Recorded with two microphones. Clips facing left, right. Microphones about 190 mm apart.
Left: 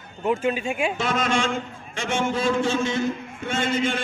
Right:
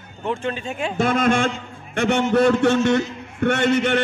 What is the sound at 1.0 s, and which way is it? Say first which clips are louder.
A man's voice: right 9 dB; 55° right (ahead or behind).